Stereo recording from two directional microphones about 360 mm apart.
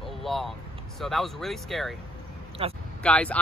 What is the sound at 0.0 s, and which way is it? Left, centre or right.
Vehicle, centre.